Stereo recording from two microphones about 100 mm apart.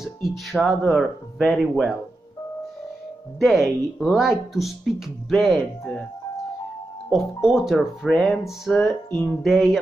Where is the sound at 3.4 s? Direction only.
Centre (ahead or behind).